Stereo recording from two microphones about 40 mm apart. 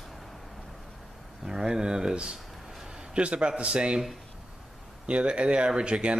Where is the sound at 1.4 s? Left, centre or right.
Centre.